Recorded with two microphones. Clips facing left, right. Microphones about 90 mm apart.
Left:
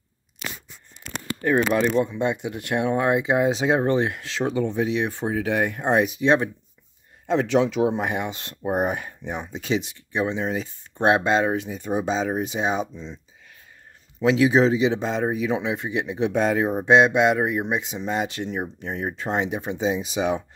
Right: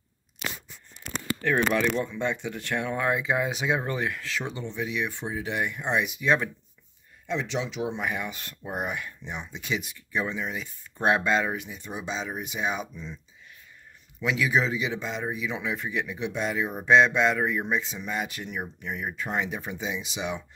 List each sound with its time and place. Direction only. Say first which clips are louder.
1.4 s speech: left 4 dB; 15° left (ahead or behind)
4.6 s speech: left 10 dB; 45° left (ahead or behind)
4.8 s speech: left 6 dB; 35° left (ahead or behind)
7.2 s speech: left 10 dB; 50° left (ahead or behind)
7.8 s speech: left 7 dB; 30° left (ahead or behind)
8.7 s speech: left 7 dB; 40° left (ahead or behind)
9.6 s speech: left 7 dB; 30° left (ahead or behind)
10.4 s speech: left 7 dB; 35° left (ahead or behind)
11.8 s speech: left 12 dB; 40° left (ahead or behind); by 13.2 s 25° left (ahead or behind)
14.4 s speech: left 8 dB; 30° left (ahead or behind)
15.6 s speech: left 4 dB; 25° left (ahead or behind)
16.2 s speech: left 10 dB; 45° left (ahead or behind)
16.6 s speech: left 1 dB; 25° left (ahead or behind); by 20.4 s 40° left (ahead or behind)